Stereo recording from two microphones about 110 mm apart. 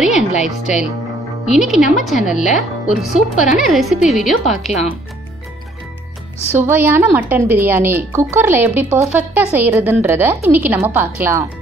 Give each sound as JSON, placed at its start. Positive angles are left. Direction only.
{"t": 0.4, "sound": "a woman's voice", "side_deg": -5}
{"t": 6.5, "sound": "a woman's voice", "side_deg": -20}